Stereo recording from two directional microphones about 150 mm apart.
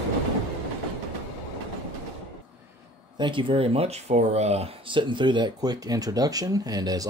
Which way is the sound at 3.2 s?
35° right (ahead or behind).